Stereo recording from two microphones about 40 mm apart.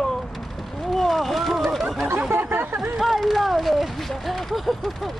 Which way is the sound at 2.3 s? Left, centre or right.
Right.